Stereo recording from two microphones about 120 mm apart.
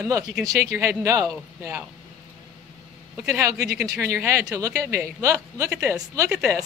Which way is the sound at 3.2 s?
25° right (ahead or behind).